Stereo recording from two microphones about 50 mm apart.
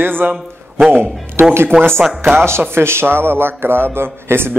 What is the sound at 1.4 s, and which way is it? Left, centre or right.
A man's voice, right.